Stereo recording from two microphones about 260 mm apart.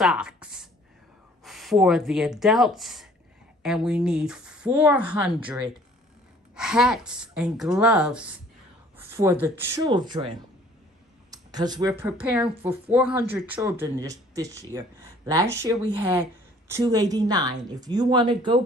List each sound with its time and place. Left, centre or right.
0.0 s speech: centre
11.2 s a woman's voice: centre